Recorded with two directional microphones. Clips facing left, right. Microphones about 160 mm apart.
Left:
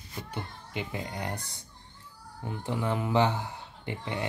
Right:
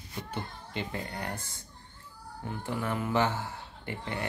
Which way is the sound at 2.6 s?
20° left (ahead or behind).